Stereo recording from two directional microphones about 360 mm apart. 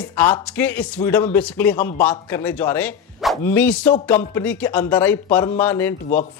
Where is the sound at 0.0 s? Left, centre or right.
Centre.